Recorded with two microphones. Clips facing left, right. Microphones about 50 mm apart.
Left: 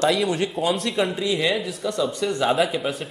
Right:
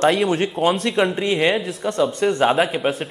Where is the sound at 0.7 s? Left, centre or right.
Right.